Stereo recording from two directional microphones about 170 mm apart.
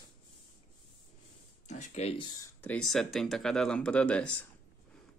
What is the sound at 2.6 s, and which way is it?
Speech, 5° left (ahead or behind).